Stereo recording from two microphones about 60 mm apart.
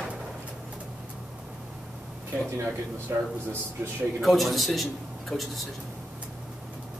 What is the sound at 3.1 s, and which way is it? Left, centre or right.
Speech, right.